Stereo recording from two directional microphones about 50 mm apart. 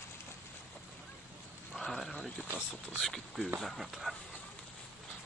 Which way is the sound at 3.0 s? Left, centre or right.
Centre.